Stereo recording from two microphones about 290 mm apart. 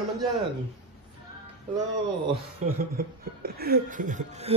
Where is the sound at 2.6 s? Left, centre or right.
Right.